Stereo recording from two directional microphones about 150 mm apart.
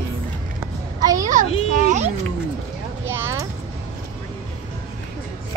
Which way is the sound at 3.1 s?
15° right (ahead or behind).